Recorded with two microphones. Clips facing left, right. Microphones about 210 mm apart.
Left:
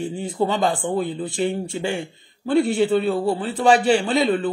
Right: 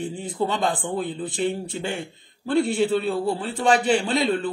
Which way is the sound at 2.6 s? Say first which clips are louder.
Left 2 dB; 20° left (ahead or behind).